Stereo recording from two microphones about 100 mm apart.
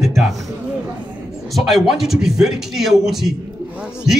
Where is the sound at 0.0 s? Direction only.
Centre (ahead or behind).